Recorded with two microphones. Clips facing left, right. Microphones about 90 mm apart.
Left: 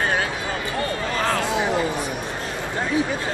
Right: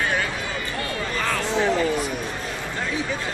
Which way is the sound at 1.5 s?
15° left (ahead or behind).